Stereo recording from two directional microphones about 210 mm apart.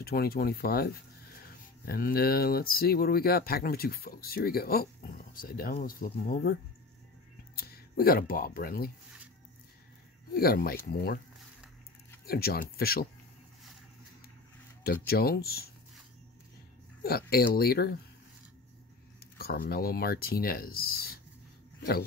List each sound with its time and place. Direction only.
0.0 s speech: 45° left (ahead or behind)
7.5 s speech: 45° left (ahead or behind)
10.3 s speech: 45° left (ahead or behind)
12.3 s speech: 45° left (ahead or behind)
14.8 s speech: 45° left (ahead or behind)
17.0 s speech: 45° left (ahead or behind)
19.3 s speech: 45° left (ahead or behind)